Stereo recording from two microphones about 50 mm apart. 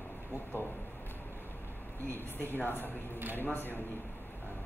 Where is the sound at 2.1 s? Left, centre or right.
Left.